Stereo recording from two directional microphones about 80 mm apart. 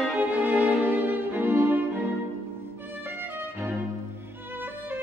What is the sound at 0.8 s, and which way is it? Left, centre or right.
Violin, right.